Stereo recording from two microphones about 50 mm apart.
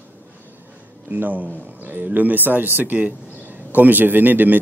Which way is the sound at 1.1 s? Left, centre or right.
Right.